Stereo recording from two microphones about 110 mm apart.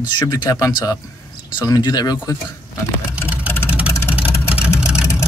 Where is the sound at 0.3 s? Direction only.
30° left (ahead or behind).